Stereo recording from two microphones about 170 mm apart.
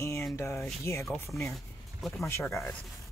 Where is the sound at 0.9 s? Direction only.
15° left (ahead or behind).